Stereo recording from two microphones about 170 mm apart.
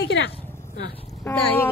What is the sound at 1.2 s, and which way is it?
Speech, 15° left (ahead or behind).